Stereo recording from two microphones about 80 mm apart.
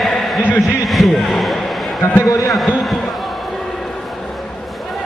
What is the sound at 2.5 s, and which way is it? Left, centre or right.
Speech, centre.